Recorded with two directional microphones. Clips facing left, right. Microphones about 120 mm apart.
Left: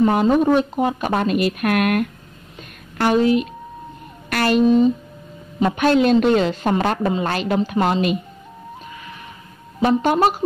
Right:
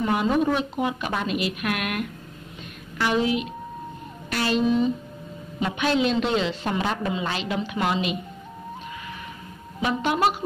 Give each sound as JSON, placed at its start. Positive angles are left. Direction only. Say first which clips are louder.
{"t": 0.0, "sound": "a woman's voice", "louder": "left 6 dB", "side_deg": 40}
{"t": 4.3, "sound": "a woman's voice", "louder": "left 6 dB", "side_deg": 60}
{"t": 4.6, "sound": "a woman's voice", "louder": "left 7 dB", "side_deg": 40}
{"t": 9.8, "sound": "a woman's voice", "louder": "left 7 dB", "side_deg": 40}